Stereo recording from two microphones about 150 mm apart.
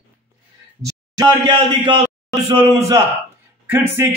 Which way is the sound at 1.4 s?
35° right (ahead or behind).